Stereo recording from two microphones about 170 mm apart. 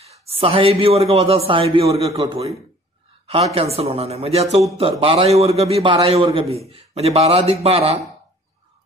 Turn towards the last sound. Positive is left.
turn(degrees=-35)  # may be behind; listen again after turning